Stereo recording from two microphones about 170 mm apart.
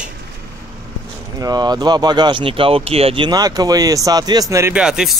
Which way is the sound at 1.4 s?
20° right (ahead or behind).